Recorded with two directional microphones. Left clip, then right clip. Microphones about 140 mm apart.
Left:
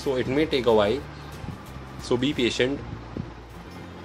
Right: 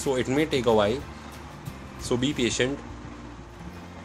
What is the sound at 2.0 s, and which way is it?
Speech, centre (ahead or behind).